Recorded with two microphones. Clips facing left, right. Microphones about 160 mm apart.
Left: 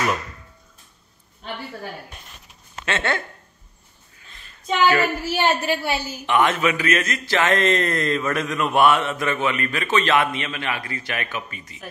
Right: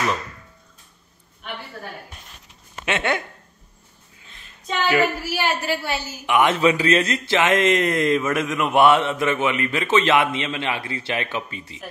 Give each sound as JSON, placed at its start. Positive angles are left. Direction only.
{"t": 2.8, "sound": "speech", "side_deg": -15}
{"t": 4.8, "sound": "speech", "side_deg": -15}
{"t": 5.3, "sound": "a woman's voice", "side_deg": 25}
{"t": 6.2, "sound": "speech", "side_deg": -10}
{"t": 6.5, "sound": "speech", "side_deg": -30}